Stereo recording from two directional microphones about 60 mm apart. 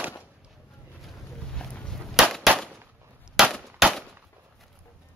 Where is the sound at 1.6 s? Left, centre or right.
Centre.